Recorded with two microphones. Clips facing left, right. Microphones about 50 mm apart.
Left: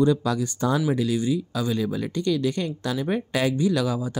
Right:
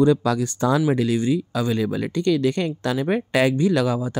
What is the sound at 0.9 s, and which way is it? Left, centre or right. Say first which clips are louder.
Speech: right 3 dB; right.